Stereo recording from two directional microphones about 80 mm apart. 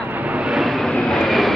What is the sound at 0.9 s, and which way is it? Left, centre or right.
Vehicle, centre.